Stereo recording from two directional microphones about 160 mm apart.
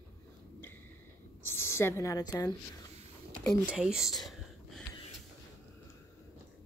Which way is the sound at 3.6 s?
5° right (ahead or behind).